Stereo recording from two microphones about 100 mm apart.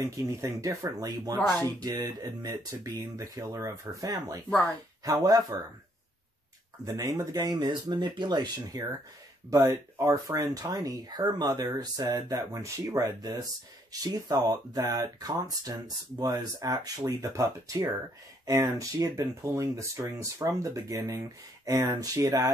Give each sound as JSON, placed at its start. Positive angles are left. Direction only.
{"t": 0.0, "sound": "speech", "side_deg": -30}
{"t": 7.3, "sound": "speech", "side_deg": -45}
{"t": 9.7, "sound": "speech", "side_deg": -30}
{"t": 12.0, "sound": "speech", "side_deg": -30}